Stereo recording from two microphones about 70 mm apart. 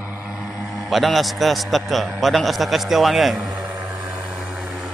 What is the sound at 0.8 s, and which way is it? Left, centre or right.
A man's voice, centre.